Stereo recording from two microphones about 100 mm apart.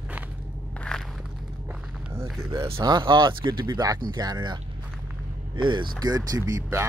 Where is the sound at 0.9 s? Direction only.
10° left (ahead or behind).